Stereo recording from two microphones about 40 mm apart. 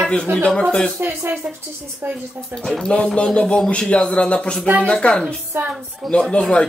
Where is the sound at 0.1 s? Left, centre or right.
Left.